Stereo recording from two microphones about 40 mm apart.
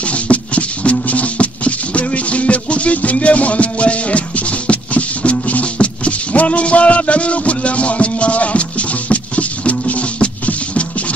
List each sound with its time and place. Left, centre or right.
0.0 s music: left